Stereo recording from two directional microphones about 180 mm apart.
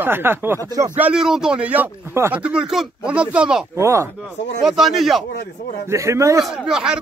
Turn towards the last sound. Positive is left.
turn(degrees=-5)  # may be behind; listen again after turning